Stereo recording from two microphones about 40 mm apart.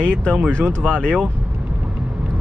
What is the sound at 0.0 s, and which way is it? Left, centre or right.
Speech, left.